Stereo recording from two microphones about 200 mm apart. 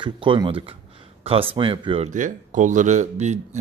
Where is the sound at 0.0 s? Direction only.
25° right (ahead or behind).